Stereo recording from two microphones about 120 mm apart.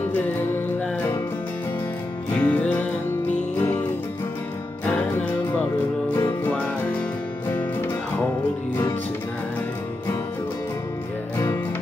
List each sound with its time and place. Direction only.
2.3 s music: 10° left (ahead or behind)
4.8 s music: 15° left (ahead or behind)
6.5 s music: 10° left (ahead or behind)